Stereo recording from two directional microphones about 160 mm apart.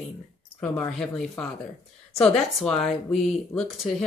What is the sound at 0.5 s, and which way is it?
Speech, 5° left (ahead or behind).